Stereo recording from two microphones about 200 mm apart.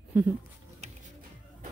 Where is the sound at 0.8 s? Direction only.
30° right (ahead or behind).